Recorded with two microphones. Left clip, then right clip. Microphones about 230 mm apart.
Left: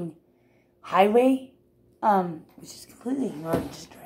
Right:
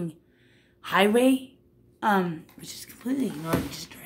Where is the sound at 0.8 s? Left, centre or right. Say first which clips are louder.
Left 2 dB; right.